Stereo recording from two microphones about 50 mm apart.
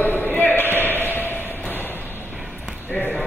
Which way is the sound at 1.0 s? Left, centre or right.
Left.